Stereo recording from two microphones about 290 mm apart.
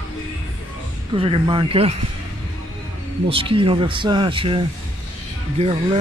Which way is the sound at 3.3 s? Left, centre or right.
Centre.